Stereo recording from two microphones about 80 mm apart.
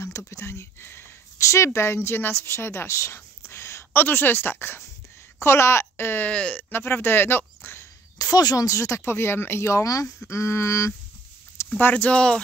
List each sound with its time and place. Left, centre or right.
0.3 s speech: left
6.2 s speech: centre
6.7 s speech: left
8.2 s speech: left
11.8 s speech: centre